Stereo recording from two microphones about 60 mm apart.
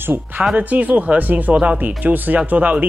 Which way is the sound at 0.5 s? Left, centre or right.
Right.